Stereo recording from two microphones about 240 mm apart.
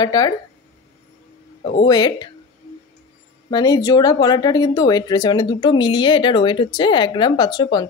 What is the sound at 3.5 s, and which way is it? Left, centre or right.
Speech, centre.